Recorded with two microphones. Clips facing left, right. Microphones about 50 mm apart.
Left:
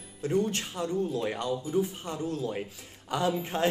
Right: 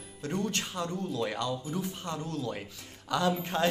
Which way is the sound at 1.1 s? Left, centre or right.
Centre.